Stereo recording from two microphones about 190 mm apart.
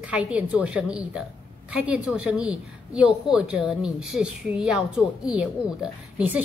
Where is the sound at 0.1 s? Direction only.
5° right (ahead or behind).